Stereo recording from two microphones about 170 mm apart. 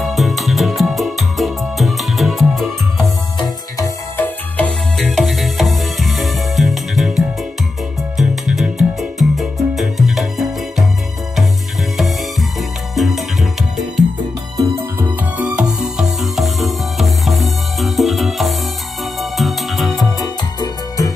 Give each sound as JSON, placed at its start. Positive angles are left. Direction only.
{"t": 0.0, "sound": "music", "side_deg": 0}
{"t": 3.3, "sound": "music", "side_deg": 20}
{"t": 4.6, "sound": "music", "side_deg": 5}
{"t": 12.0, "sound": "music", "side_deg": 0}
{"t": 14.6, "sound": "music", "side_deg": -15}